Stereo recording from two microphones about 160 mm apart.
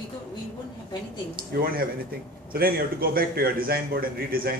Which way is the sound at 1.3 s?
70° right (ahead or behind).